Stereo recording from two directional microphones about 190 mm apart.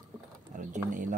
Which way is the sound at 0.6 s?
45° right (ahead or behind).